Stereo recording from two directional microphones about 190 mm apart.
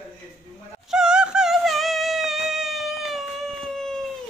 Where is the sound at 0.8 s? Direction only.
5° right (ahead or behind).